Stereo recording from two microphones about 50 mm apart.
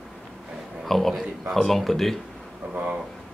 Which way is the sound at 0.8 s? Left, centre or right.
Centre.